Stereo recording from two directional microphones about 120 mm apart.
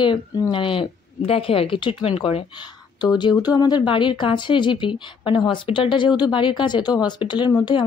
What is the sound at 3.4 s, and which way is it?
A woman's voice, 35° left (ahead or behind).